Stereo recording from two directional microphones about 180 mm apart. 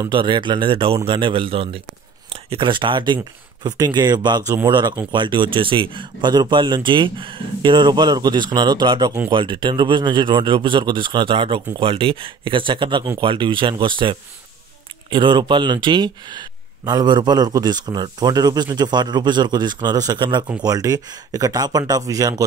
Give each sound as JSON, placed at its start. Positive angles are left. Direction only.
{"t": 0.0, "sound": "speech", "side_deg": -25}